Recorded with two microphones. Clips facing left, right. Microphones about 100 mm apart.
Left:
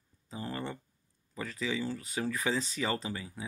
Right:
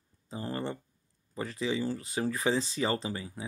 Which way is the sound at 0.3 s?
35° right (ahead or behind).